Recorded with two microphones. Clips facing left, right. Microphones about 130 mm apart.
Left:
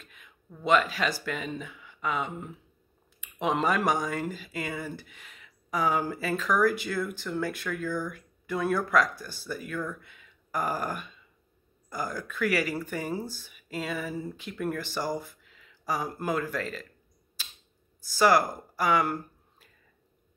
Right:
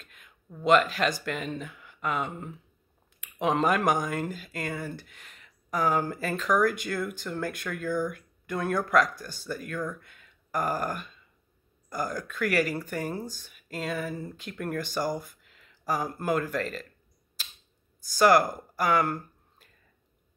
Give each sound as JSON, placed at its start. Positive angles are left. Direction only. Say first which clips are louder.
{"t": 0.0, "sound": "speech", "louder": "left 1 dB", "side_deg": 0}
{"t": 10.0, "sound": "a sound", "louder": "left 1 dB", "side_deg": 5}
{"t": 11.9, "sound": "speech", "louder": "right 2 dB", "side_deg": 5}
{"t": 18.1, "sound": "speech", "louder": "right 2 dB", "side_deg": 5}